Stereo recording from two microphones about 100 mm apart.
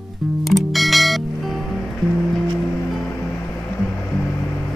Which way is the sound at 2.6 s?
20° left (ahead or behind).